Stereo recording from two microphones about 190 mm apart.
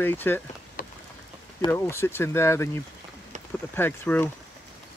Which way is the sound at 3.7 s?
10° left (ahead or behind).